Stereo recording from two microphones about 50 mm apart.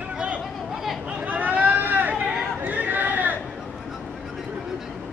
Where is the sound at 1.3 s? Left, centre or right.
Right.